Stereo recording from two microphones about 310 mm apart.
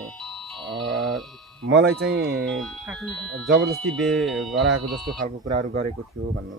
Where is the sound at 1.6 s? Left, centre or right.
Right.